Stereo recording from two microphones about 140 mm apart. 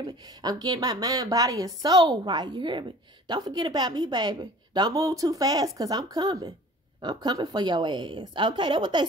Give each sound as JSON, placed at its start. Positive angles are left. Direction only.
{"t": 0.0, "sound": "a woman's voice", "side_deg": -30}